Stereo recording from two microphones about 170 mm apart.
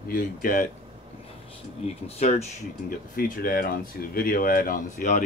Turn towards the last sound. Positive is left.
turn(degrees=55)  # may be behind; listen again after turning